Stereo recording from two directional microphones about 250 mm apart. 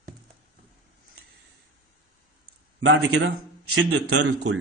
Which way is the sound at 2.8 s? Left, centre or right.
Right.